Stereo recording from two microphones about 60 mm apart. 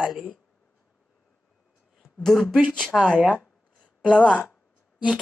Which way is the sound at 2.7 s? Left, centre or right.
Centre.